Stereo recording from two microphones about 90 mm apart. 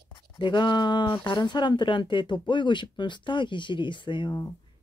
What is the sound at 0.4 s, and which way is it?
Speech, 60° left (ahead or behind).